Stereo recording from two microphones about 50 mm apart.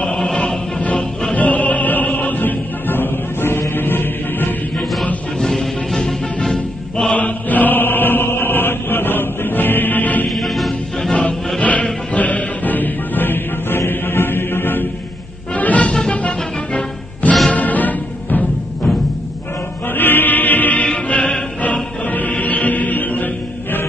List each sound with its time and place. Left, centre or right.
0.1 s music: centre; by 4.6 s left
5.4 s music: centre
7.2 s chant: left
10.3 s music: centre
11.6 s music: left
15.5 s music: left
15.9 s music: centre
17.5 s music: left
20.0 s music: left
20.8 s music: left
22.1 s music: left